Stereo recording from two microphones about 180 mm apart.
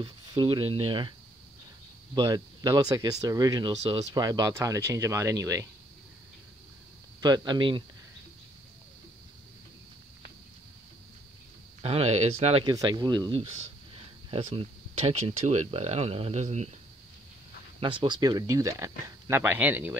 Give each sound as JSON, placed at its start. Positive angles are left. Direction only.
{"t": 0.0, "sound": "speech", "side_deg": -25}
{"t": 2.1, "sound": "speech", "side_deg": -20}
{"t": 7.2, "sound": "speech", "side_deg": -25}
{"t": 11.8, "sound": "speech", "side_deg": -35}
{"t": 12.6, "sound": "speech", "side_deg": -25}
{"t": 17.7, "sound": "speech", "side_deg": -25}